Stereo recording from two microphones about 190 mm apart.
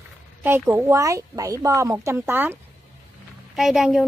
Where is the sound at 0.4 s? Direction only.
10° right (ahead or behind).